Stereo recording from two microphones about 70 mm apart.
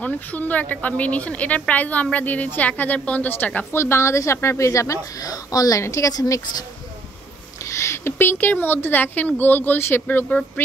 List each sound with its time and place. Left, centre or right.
0.0 s a woman's voice: left
3.7 s speech: left
7.6 s a woman's voice: left